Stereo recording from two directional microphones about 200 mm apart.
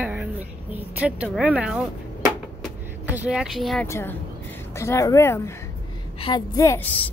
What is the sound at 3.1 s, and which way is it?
Speech, 5° right (ahead or behind).